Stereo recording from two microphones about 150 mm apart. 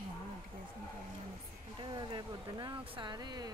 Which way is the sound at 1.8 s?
30° right (ahead or behind).